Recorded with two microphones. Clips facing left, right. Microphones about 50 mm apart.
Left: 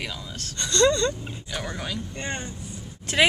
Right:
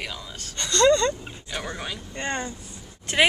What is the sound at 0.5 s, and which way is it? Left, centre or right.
Speech, right.